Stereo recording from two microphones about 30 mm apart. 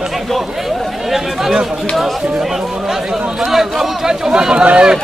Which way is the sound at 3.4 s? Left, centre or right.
Centre.